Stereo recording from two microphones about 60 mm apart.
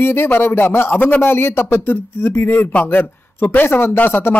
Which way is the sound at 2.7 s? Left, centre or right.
Left.